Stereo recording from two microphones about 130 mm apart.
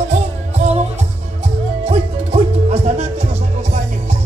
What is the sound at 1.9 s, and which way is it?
Music, 50° right (ahead or behind).